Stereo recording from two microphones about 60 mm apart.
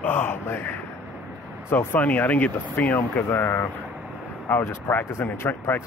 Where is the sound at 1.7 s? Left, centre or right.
Left.